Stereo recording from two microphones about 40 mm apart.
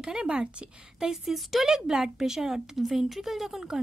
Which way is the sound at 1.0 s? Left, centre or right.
Centre.